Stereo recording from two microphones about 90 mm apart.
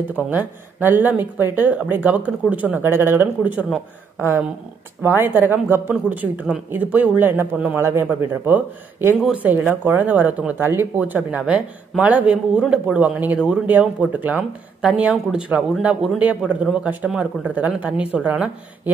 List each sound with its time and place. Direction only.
0.1 s a man's voice: 20° right (ahead or behind)
5.0 s a man's voice: 25° right (ahead or behind)